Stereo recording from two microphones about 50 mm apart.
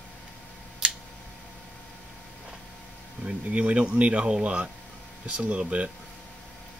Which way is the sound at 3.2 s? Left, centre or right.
Right.